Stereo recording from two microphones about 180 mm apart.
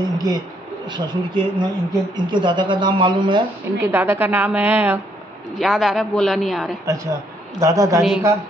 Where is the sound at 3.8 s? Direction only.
15° right (ahead or behind).